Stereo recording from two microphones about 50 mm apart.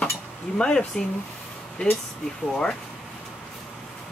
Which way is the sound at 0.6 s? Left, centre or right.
Centre.